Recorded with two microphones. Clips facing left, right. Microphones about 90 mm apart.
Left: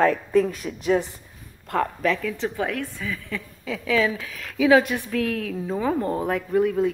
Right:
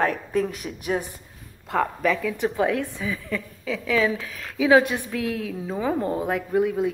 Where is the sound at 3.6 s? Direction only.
Centre (ahead or behind).